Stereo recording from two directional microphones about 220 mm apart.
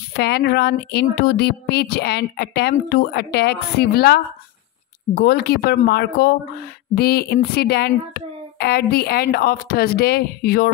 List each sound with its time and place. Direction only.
0.1 s speech: 45° left (ahead or behind)